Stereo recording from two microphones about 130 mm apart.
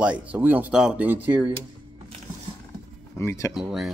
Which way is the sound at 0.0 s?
10° right (ahead or behind).